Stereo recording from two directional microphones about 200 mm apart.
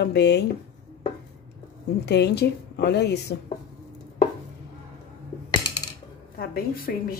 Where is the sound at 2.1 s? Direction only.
55° left (ahead or behind).